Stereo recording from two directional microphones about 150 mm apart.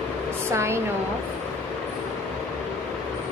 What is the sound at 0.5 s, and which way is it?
Speech, 15° right (ahead or behind).